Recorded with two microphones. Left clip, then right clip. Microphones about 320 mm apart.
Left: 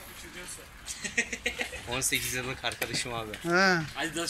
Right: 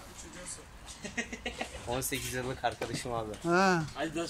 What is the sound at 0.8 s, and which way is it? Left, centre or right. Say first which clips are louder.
Speech: left 8 dB; right.